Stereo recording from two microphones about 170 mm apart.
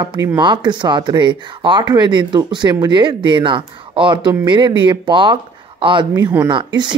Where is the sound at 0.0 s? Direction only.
25° right (ahead or behind).